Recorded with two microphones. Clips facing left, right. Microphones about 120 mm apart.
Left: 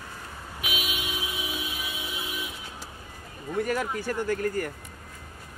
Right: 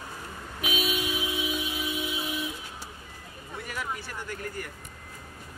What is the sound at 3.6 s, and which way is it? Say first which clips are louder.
Speech: left 8 dB; 45° left (ahead or behind).